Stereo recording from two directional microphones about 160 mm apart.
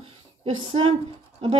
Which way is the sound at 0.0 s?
40° right (ahead or behind).